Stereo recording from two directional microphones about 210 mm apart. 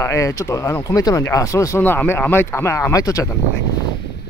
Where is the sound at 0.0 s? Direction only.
15° left (ahead or behind).